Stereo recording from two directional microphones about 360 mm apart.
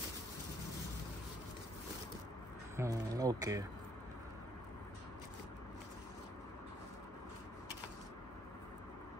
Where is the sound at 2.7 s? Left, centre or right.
Centre.